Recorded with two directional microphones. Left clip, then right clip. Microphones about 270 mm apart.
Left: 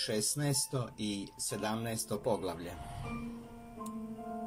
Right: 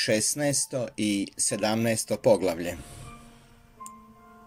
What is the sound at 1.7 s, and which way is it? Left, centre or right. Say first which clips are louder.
Speech: right 11 dB; right.